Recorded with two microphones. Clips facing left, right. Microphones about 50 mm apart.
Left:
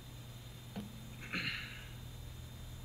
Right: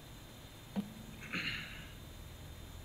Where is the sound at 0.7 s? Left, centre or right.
Centre.